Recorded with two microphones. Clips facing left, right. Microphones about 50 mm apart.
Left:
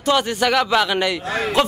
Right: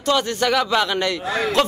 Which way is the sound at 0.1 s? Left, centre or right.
Centre.